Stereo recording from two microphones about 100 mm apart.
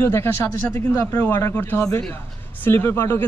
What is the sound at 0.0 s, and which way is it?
A man's voice, 25° left (ahead or behind).